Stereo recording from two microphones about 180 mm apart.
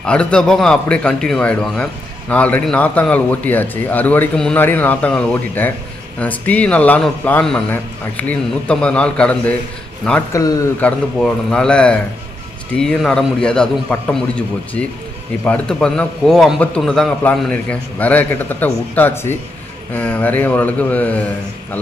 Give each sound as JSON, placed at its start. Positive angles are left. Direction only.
{"t": 0.0, "sound": "a man's voice", "side_deg": 5}
{"t": 10.3, "sound": "speech", "side_deg": 20}
{"t": 10.8, "sound": "a man's voice", "side_deg": 5}